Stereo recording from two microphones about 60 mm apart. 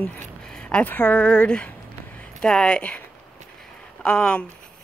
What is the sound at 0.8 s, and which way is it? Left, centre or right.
Speech, left.